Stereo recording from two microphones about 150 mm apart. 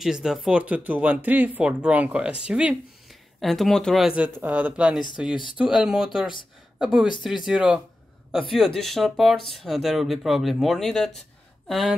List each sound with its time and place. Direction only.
0.0 s speech: 5° right (ahead or behind)
5.3 s speech: 30° left (ahead or behind)
5.6 s speech: 5° right (ahead or behind)